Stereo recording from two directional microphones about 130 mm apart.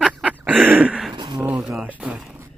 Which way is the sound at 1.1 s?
35° right (ahead or behind).